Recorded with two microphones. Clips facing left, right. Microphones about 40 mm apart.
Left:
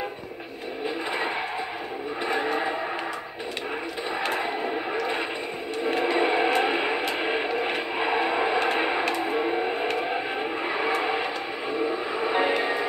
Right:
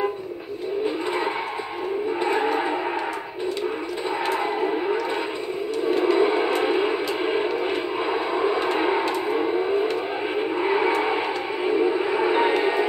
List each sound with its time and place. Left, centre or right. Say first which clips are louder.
2.2 s vehicle: right 2 dB; centre
6.0 s a sound: right 2 dB; left
6.6 s music: right 3 dB; centre
7.7 s vehicle: right 1 dB; left
8.7 s a sound: right 3 dB; centre
12.3 s music: right 2 dB; centre